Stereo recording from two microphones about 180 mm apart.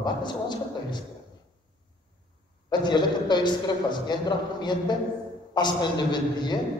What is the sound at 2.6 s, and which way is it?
A man's voice, 25° left (ahead or behind).